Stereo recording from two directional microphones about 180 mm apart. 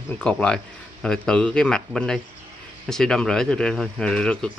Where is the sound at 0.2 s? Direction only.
5° left (ahead or behind).